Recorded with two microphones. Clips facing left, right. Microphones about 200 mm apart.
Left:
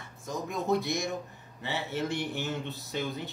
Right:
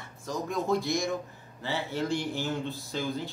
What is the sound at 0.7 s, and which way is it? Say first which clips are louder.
Speech: left 1 dB; 20° left (ahead or behind).